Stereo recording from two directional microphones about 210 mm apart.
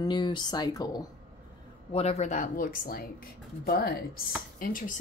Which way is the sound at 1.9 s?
30° left (ahead or behind).